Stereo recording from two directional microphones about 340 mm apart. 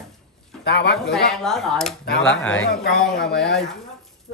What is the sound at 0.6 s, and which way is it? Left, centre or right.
Speech, left.